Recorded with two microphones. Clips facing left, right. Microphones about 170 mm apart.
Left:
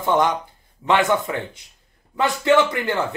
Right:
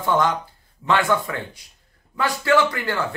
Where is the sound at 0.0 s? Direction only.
20° left (ahead or behind).